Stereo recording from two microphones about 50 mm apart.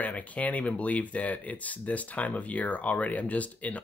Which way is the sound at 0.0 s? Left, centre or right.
Left.